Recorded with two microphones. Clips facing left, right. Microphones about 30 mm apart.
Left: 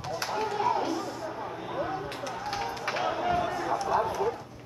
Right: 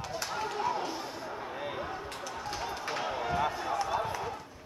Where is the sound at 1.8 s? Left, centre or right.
Centre.